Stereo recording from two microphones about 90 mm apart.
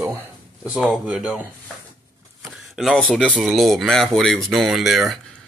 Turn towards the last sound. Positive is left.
turn(degrees=0)  # may be behind; listen again after turning